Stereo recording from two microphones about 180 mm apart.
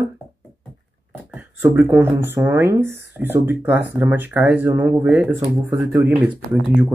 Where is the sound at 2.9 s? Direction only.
70° left (ahead or behind).